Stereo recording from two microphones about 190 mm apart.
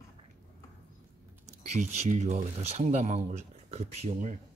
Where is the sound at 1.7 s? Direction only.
40° right (ahead or behind).